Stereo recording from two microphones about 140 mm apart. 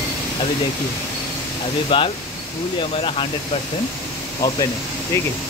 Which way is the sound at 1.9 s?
35° left (ahead or behind).